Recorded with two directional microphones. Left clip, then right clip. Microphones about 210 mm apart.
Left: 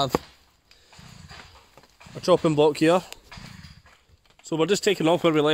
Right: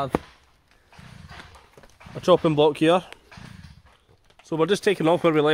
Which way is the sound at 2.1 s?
5° left (ahead or behind).